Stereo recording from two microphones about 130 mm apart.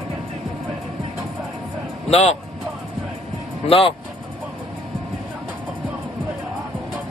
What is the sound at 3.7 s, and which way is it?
Speech, 45° left (ahead or behind).